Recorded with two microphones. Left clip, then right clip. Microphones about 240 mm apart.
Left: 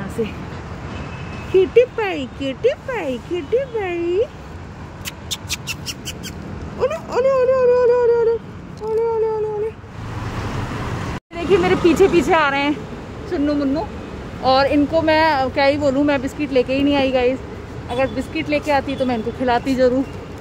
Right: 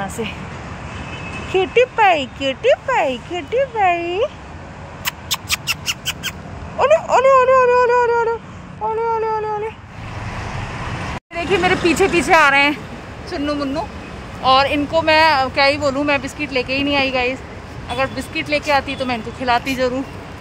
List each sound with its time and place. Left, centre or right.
1.5 s speech: centre
5.0 s a sound: centre
6.8 s speech: centre
11.3 s speech: centre
13.3 s speech: centre
14.4 s speech: left